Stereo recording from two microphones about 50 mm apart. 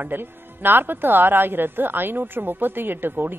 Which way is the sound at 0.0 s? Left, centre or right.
Right.